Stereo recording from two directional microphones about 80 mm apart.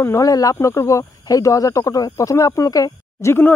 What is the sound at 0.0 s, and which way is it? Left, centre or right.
Speech, left.